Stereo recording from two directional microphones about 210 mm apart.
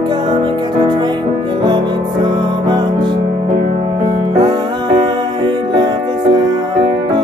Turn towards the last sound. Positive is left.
turn(degrees=-20)  # may be behind; listen again after turning